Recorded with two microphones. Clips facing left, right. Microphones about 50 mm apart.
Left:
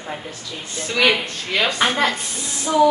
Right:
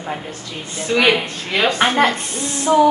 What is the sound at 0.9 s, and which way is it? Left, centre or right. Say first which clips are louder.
Speech: right 3 dB; centre.